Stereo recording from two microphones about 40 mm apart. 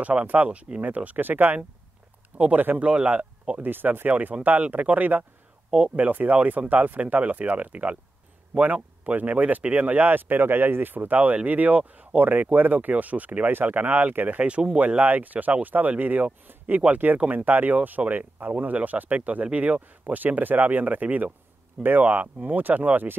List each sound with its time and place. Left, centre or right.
0.0 s speech: right
2.3 s speech: right
3.6 s speech: right